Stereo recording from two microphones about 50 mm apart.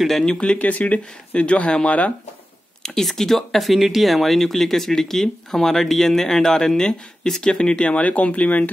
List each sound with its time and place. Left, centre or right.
0.0 s speech: centre
0.3 s speech: left
2.8 s speech: centre; by 8.6 s left